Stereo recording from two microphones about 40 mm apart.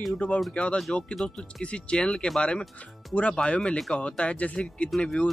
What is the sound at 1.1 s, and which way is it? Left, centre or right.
Speech, centre.